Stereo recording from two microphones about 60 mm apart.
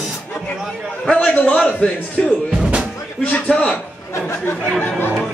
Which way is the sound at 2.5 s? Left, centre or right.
Centre.